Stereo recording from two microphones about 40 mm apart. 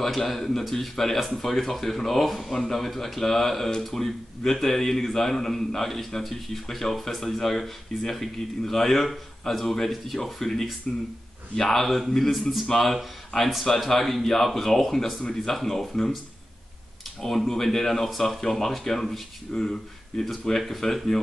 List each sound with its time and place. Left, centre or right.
0.0 s speech: centre
17.2 s speech: centre